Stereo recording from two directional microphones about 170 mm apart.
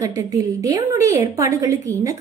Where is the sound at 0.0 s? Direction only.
20° right (ahead or behind).